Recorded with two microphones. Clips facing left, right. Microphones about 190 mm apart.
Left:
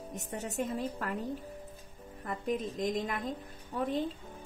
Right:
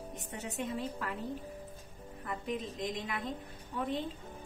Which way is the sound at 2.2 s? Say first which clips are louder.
Left 4 dB; 40° left (ahead or behind).